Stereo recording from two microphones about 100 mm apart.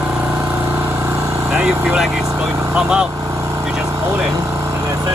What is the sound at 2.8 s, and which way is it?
Speech, 5° right (ahead or behind).